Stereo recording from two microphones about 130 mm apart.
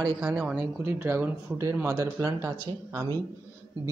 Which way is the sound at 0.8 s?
15° right (ahead or behind).